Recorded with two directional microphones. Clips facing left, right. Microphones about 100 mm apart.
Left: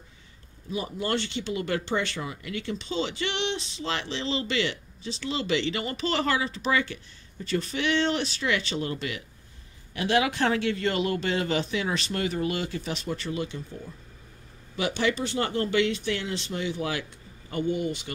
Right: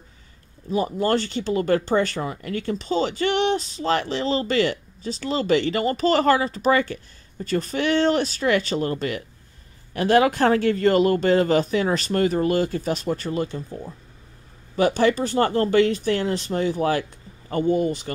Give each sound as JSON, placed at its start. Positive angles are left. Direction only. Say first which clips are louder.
{"t": 0.7, "sound": "speech", "louder": "right 8 dB", "side_deg": -40}